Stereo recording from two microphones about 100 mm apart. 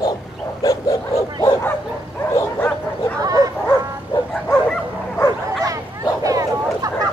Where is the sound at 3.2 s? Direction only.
40° right (ahead or behind).